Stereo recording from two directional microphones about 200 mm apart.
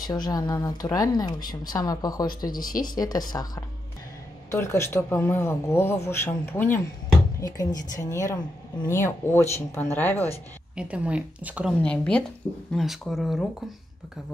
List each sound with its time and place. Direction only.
0.0 s speech: 20° left (ahead or behind)
2.5 s speech: 45° left (ahead or behind)
2.8 s speech: 20° left (ahead or behind)
10.8 s speech: 5° right (ahead or behind)
11.8 s speech: 5° left (ahead or behind)